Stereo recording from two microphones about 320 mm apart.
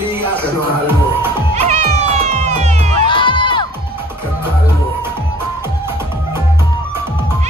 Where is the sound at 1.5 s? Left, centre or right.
Right.